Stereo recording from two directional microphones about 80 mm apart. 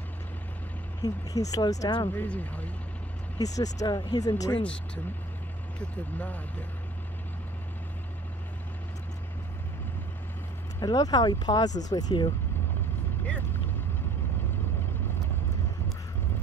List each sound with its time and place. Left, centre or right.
1.0 s speech: left
2.1 s speech: centre
3.3 s speech: left
5.8 s speech: centre
10.8 s speech: left